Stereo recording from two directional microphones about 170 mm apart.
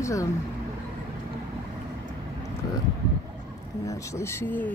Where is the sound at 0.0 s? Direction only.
20° left (ahead or behind).